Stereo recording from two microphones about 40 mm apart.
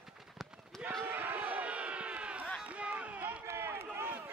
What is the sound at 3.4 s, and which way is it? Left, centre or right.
Run, right.